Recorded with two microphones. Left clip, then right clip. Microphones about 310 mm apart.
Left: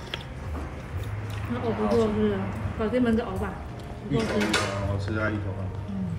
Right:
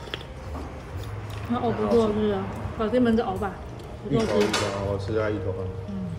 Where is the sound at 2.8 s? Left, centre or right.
Centre.